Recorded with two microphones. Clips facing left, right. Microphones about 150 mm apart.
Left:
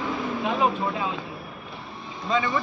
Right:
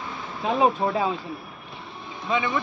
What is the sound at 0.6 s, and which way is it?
Speech, 35° right (ahead or behind).